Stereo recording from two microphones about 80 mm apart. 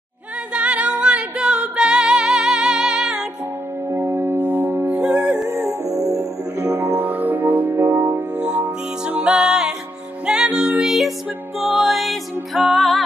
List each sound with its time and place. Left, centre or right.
0.5 s music: centre
3.9 s music: right
5.7 s music: left
6.7 s music: right; by 13.0 s centre